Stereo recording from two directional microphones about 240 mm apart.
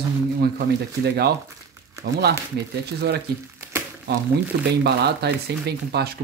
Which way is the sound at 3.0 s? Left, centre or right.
Right.